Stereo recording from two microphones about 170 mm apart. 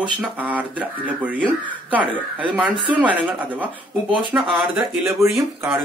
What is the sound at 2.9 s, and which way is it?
Speech, 10° right (ahead or behind).